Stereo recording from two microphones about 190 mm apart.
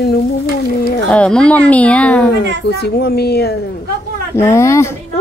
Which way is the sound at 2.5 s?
60° left (ahead or behind).